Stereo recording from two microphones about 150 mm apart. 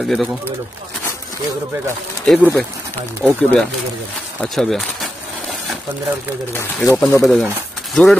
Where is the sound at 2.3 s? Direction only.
5° left (ahead or behind).